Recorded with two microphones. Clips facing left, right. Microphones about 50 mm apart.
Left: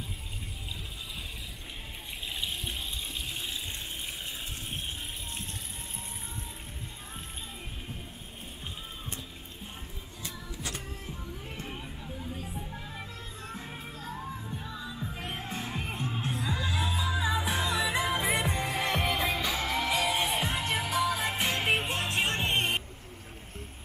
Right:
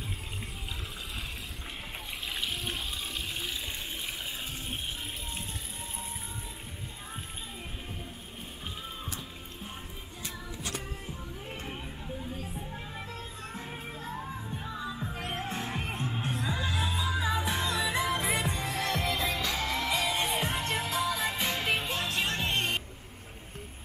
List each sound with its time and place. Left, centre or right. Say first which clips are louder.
2.4 s water: right 1 dB; centre
11.6 s a sound: right 1 dB; centre
13.5 s music: even; centre
14.6 s music: right 2 dB; centre; by 19.3 s left
19.3 s music: left 1 dB; centre